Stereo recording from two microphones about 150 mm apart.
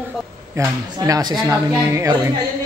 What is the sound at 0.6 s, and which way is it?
Speech, 25° right (ahead or behind).